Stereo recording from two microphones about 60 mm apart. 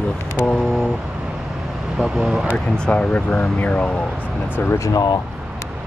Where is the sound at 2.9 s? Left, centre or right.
Left.